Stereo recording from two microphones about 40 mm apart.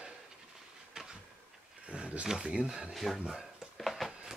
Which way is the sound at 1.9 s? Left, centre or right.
Right.